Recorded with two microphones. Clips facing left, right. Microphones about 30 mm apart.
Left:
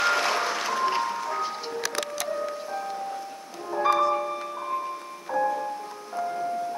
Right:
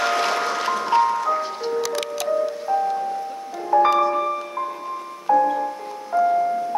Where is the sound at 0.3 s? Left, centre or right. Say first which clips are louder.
Right 4 dB; centre.